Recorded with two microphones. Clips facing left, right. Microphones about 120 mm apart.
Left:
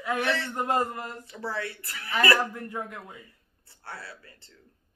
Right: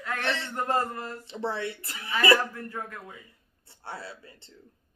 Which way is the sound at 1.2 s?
25° right (ahead or behind).